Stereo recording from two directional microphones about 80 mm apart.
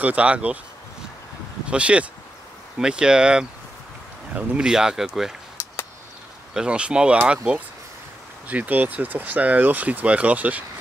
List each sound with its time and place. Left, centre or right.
0.0 s speech: centre
1.7 s speech: centre
6.5 s speech: centre